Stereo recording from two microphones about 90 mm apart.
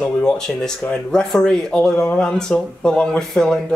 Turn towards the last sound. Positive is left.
turn(degrees=5)  # may be behind; listen again after turning